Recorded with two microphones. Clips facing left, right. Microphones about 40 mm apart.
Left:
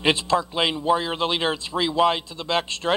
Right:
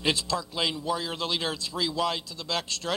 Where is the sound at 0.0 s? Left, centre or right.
Left.